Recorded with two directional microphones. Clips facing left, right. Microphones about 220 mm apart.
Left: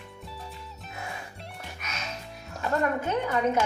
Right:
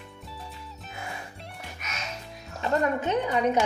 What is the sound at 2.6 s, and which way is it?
A woman's voice, 15° right (ahead or behind).